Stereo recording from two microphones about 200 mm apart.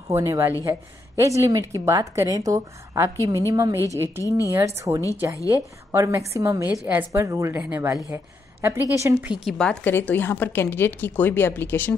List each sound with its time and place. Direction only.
0.1 s a woman's voice: 15° right (ahead or behind)
9.3 s a woman's voice: centre (ahead or behind)